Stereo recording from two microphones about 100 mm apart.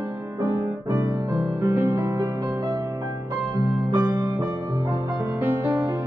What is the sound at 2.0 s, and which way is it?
Music, 45° right (ahead or behind).